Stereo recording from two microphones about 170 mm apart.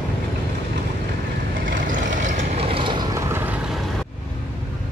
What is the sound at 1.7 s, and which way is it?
Vehicle, 50° right (ahead or behind).